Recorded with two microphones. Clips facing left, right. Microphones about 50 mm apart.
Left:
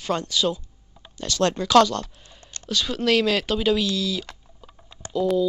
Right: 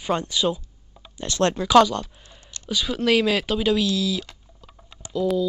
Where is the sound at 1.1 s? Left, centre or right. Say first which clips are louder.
Even; right.